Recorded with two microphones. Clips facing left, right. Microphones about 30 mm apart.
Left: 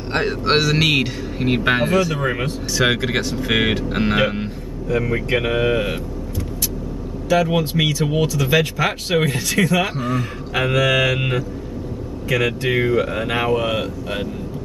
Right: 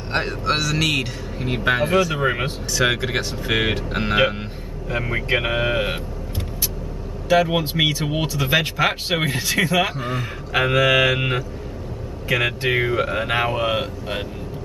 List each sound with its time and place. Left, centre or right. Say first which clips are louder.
0.1 s speech: left 3 dB; centre
0.5 s speech: left 4 dB; left
2.1 s speech: right 1 dB; centre
2.7 s speech: left 2 dB; centre
4.8 s speech: left 3 dB; centre
7.2 s speech: even; centre